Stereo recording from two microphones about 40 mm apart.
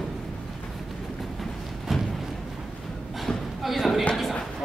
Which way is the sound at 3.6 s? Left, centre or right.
Centre.